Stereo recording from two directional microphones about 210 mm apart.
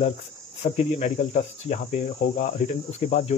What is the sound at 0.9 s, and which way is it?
Cricket, 35° left (ahead or behind).